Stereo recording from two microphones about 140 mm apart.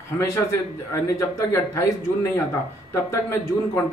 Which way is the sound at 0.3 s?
20° left (ahead or behind).